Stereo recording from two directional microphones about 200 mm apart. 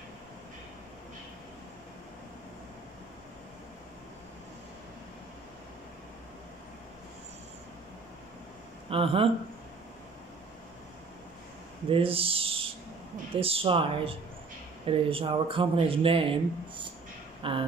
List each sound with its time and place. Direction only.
8.9 s speech: 25° right (ahead or behind)
11.9 s speech: 25° right (ahead or behind)